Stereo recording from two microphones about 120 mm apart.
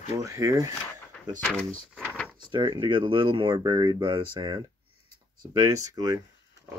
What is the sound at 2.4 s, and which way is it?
Speech, 40° right (ahead or behind).